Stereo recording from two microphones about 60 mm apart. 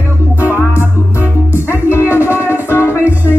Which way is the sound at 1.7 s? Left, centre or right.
Left.